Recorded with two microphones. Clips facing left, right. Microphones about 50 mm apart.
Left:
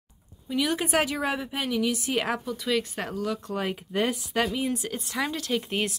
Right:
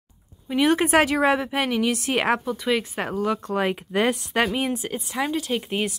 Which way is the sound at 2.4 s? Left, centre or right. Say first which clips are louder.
Right 3 dB; right.